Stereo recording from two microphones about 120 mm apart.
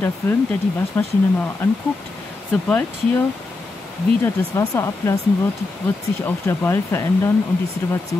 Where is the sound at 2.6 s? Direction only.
15° left (ahead or behind).